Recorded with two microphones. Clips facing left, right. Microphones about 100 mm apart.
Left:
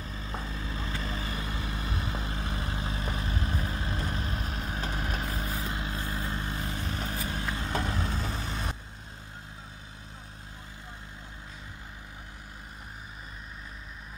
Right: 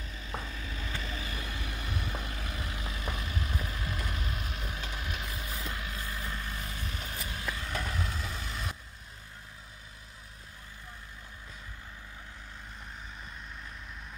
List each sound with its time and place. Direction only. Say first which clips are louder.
0.0 s vehicle: left 2 dB; 35° left (ahead or behind)